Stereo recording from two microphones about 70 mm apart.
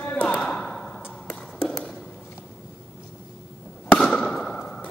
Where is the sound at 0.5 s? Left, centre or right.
Centre.